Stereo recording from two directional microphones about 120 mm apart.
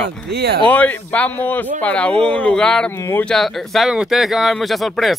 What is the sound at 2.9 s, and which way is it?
Speech, 20° left (ahead or behind).